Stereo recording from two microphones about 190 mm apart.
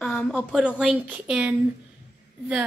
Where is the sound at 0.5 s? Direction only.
5° right (ahead or behind).